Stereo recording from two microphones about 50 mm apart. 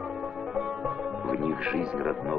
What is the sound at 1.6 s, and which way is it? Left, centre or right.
Speech, centre.